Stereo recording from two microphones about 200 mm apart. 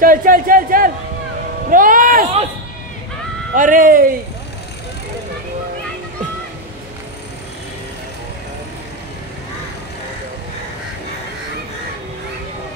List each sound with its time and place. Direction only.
0.0 s a man's voice: 45° right (ahead or behind)
1.7 s a sound: 45° right (ahead or behind)
3.5 s a man's voice: 40° right (ahead or behind)